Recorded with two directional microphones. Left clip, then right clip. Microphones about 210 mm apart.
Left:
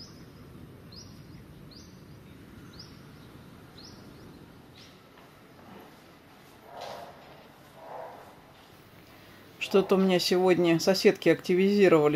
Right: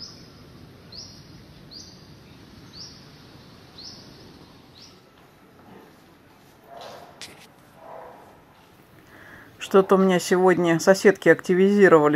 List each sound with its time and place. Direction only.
9.7 s speech: 15° right (ahead or behind)